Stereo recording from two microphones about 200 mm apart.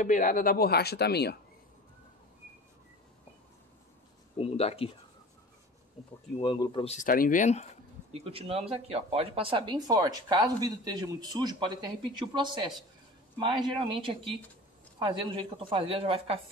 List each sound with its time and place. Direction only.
0.0 s speech: 40° left (ahead or behind)
4.4 s speech: 30° left (ahead or behind)
6.4 s speech: 25° left (ahead or behind)
8.1 s speech: 30° right (ahead or behind)